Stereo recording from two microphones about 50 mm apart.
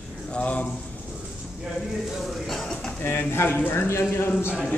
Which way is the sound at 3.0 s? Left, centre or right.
Left.